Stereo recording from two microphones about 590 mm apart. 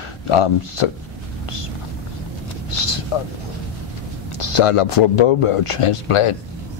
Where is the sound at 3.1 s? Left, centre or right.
Left.